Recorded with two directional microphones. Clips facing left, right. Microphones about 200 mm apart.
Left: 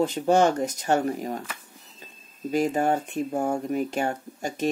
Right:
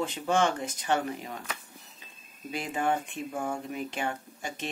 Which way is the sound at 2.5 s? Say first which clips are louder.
Left 7 dB; 40° left (ahead or behind).